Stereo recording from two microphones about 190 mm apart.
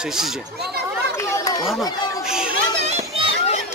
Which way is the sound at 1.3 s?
20° left (ahead or behind).